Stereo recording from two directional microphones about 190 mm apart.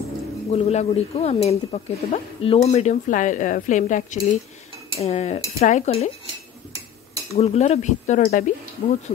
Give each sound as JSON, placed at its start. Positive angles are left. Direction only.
{"t": 0.5, "sound": "speech", "side_deg": 35}
{"t": 7.3, "sound": "speech", "side_deg": 35}